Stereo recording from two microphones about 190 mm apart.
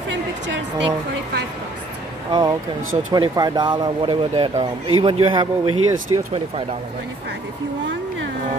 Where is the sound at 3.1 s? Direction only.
20° right (ahead or behind).